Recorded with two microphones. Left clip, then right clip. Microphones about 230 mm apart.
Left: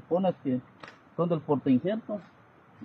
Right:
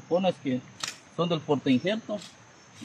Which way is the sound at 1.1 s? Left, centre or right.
Centre.